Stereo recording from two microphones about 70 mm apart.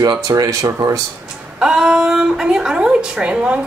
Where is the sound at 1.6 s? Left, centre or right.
Centre.